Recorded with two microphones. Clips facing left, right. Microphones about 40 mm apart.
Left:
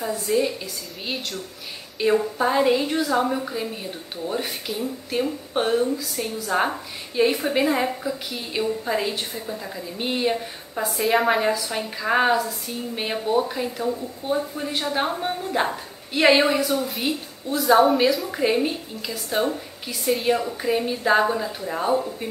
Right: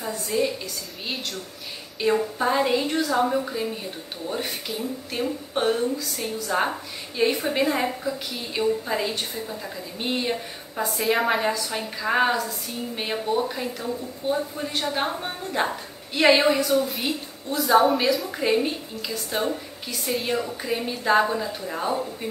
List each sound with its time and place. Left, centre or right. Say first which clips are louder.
0.0 s a woman's voice: left 3 dB; centre